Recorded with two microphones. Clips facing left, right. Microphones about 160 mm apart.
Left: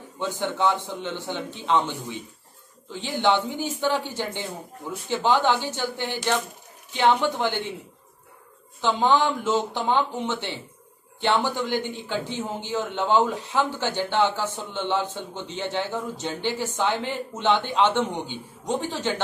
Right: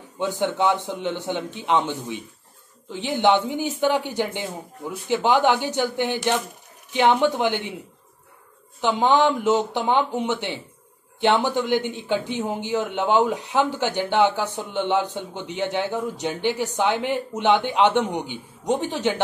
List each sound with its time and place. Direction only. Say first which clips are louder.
0.2 s speech: right 3 dB; 15° right (ahead or behind)
8.8 s speech: right 2 dB; 15° right (ahead or behind)